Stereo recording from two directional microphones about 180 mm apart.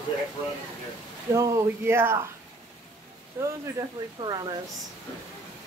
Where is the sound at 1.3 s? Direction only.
15° right (ahead or behind).